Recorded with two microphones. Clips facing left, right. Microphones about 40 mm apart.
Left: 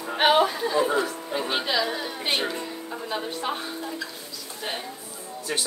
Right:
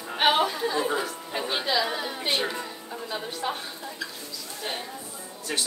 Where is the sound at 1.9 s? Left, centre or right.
Centre.